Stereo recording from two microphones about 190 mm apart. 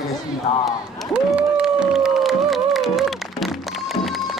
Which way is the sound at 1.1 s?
5° right (ahead or behind).